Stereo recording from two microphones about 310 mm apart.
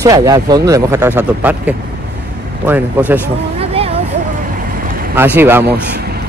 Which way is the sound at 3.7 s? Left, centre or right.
Centre.